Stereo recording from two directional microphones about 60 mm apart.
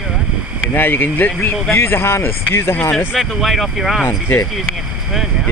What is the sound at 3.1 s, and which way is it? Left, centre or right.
Speech, centre.